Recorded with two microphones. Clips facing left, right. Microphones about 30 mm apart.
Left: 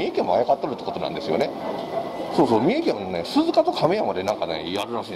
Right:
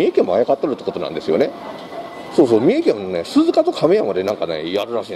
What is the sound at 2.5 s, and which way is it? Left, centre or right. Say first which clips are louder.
Speech: right 6 dB; centre.